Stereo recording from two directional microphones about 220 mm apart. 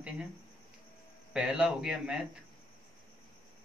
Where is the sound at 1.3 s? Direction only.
5° right (ahead or behind).